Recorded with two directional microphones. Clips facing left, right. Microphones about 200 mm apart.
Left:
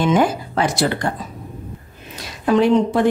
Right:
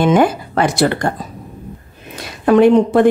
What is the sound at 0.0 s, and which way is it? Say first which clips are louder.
Speech: right 4 dB; 60° right (ahead or behind).